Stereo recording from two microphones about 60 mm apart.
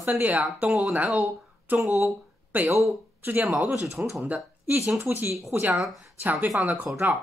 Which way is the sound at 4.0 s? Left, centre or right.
Right.